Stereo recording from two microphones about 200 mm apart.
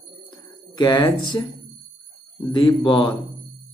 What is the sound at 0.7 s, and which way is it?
Speech, 15° left (ahead or behind).